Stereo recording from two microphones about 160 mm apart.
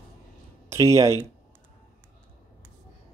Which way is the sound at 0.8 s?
20° right (ahead or behind).